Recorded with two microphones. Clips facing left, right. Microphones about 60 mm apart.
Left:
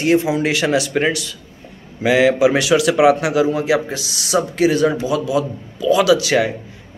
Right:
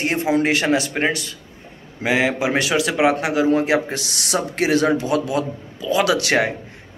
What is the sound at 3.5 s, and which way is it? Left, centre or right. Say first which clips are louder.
A man's voice: even; right.